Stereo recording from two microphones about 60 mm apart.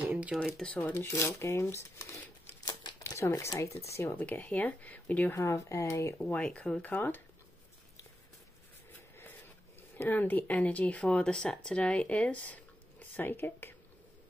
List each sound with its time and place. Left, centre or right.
0.3 s speech: centre
0.7 s speech: left
0.9 s speech: left
2.6 s a sound: left
3.1 s speech: left
4.1 s speech: left
5.3 s speech: left
6.3 s speech: left
9.9 s speech: left